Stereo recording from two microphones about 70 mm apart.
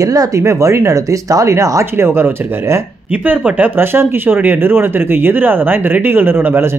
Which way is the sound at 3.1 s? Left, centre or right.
Right.